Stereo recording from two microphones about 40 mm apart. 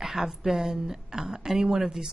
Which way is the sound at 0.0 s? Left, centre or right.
Centre.